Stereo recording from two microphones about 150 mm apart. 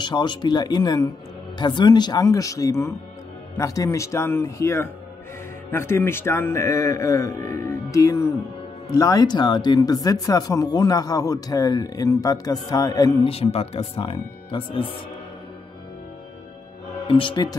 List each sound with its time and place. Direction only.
0.0 s a man's voice: 30° left (ahead or behind)
13.3 s speech: 40° left (ahead or behind)
17.1 s speech: 35° left (ahead or behind)